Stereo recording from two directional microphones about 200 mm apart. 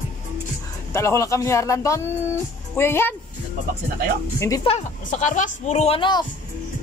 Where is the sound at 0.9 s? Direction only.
15° left (ahead or behind).